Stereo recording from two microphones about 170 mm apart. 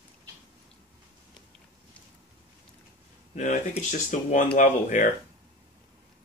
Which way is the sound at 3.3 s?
45° left (ahead or behind).